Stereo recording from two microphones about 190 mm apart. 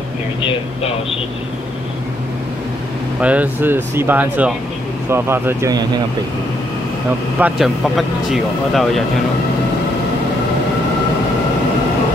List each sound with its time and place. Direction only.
3.2 s speech: 5° right (ahead or behind)
7.3 s speech: 5° right (ahead or behind)